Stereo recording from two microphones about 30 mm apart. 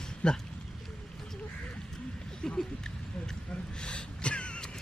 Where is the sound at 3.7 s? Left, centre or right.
Left.